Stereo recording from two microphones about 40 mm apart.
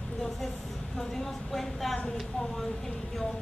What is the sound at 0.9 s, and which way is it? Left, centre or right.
Speech, centre.